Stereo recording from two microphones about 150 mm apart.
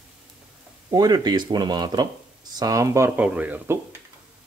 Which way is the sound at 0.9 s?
25° right (ahead or behind).